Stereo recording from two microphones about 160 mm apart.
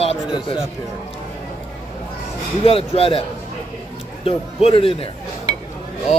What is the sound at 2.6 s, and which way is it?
A man's voice, 35° left (ahead or behind).